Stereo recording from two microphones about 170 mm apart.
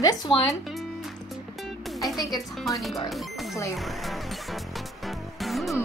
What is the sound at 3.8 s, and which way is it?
Music, centre (ahead or behind).